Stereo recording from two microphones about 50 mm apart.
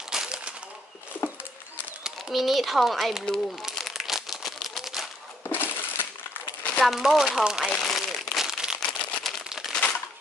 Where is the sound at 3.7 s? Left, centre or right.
Centre.